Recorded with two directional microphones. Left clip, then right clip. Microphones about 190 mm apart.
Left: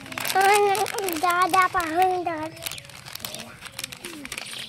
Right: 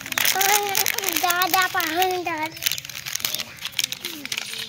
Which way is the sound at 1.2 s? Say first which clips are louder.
Left 1 dB; 50° left (ahead or behind).